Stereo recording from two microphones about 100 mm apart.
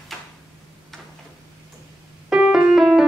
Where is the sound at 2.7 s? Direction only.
5° right (ahead or behind).